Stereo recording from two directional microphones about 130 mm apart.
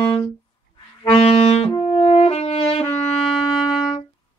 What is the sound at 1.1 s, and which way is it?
Brass instrument, 50° left (ahead or behind).